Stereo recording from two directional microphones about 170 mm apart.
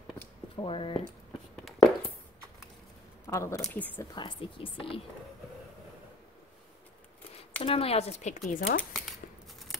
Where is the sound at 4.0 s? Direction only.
25° left (ahead or behind).